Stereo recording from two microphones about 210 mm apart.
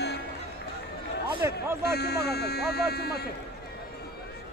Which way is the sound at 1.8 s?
50° left (ahead or behind).